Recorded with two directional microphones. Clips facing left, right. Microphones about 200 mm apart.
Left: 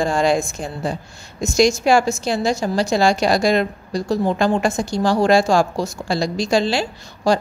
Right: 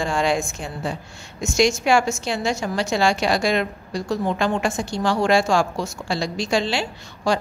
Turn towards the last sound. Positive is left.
turn(degrees=40)  # may be behind; listen again after turning